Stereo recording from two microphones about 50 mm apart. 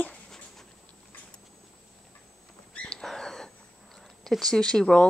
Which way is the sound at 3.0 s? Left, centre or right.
Centre.